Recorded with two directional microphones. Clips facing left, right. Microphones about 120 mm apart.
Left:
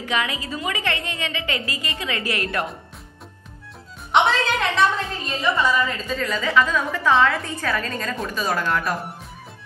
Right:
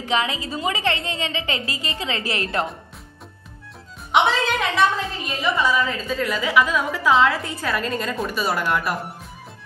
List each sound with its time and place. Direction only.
0.0 s a woman's voice: 25° right (ahead or behind)
4.1 s a woman's voice: 5° right (ahead or behind)